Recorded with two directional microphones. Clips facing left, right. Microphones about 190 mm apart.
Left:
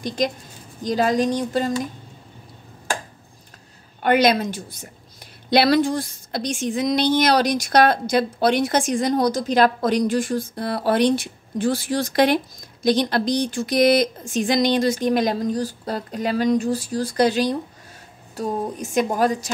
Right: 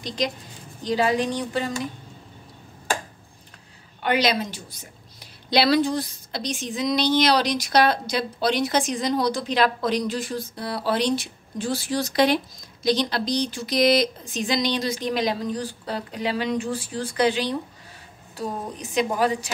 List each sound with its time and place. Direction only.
0.0 s a woman's voice: 50° left (ahead or behind)
4.0 s a woman's voice: 50° left (ahead or behind)